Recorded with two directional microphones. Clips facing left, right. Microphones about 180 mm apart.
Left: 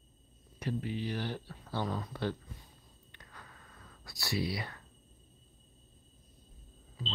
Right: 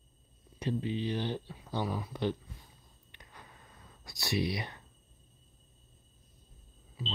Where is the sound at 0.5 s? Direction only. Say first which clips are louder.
Right 3 dB; 20° right (ahead or behind).